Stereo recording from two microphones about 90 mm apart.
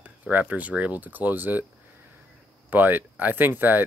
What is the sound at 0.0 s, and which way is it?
Speech, 20° right (ahead or behind).